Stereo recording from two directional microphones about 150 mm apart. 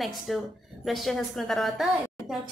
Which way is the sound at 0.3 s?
Centre (ahead or behind).